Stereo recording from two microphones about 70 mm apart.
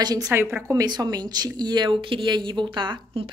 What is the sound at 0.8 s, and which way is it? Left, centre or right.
A woman's voice, right.